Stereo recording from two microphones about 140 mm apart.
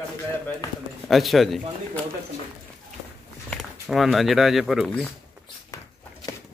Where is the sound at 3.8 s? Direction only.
Centre (ahead or behind).